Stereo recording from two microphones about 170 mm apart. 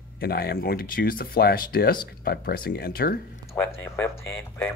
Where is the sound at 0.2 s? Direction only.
65° left (ahead or behind).